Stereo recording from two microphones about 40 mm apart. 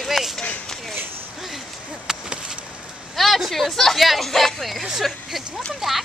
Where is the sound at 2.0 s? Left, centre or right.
Centre.